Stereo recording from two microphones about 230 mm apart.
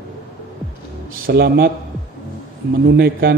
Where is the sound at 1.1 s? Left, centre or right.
Right.